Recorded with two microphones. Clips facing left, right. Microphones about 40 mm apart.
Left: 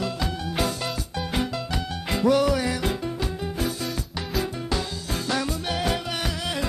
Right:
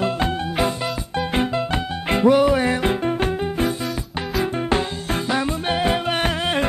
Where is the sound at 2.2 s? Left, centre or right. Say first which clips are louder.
Right 5 dB; right.